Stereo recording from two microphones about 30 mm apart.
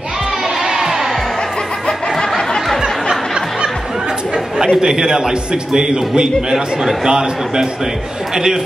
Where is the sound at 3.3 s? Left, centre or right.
Right.